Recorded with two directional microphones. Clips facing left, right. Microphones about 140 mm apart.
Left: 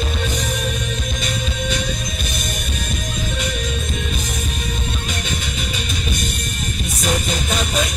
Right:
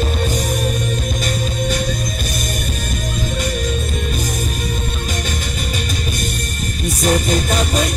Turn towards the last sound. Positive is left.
turn(degrees=-45)  # may be behind; listen again after turning